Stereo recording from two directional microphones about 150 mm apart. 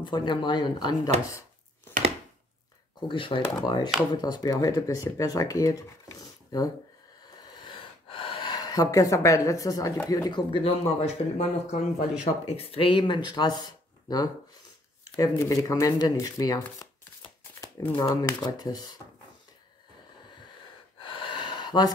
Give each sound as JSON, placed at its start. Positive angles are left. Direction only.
{"t": 0.0, "sound": "speech", "side_deg": 30}
{"t": 3.1, "sound": "speech", "side_deg": 35}
{"t": 21.0, "sound": "gasp", "side_deg": 35}